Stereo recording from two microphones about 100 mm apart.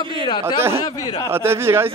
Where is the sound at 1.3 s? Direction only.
25° right (ahead or behind).